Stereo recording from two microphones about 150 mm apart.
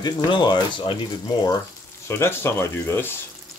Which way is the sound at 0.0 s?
30° left (ahead or behind).